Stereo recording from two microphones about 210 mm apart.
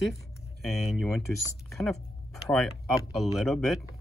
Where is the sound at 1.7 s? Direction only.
Centre (ahead or behind).